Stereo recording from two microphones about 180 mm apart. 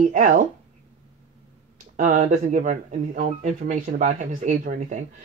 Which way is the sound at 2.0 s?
45° right (ahead or behind).